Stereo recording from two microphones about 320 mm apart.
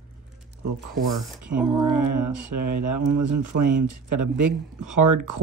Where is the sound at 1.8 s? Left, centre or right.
Right.